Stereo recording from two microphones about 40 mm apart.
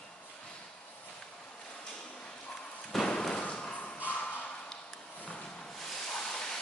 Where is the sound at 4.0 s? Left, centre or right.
Left.